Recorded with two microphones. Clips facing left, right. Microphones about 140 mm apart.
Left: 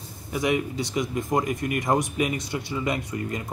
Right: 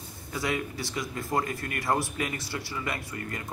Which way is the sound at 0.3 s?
20° left (ahead or behind).